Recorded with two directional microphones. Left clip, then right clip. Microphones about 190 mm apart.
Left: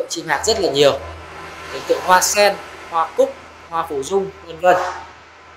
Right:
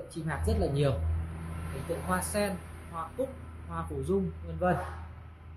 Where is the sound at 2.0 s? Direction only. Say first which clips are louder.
Left 19 dB; 35° left (ahead or behind).